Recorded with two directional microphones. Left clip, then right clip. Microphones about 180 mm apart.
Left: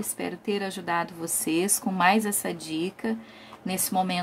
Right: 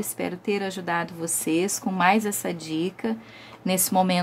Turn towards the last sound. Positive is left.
turn(degrees=-25)  # may be behind; listen again after turning